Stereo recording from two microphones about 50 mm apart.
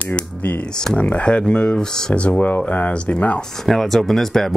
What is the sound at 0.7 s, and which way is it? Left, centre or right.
Speech, centre.